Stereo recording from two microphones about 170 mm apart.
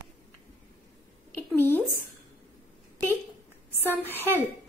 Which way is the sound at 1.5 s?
10° left (ahead or behind).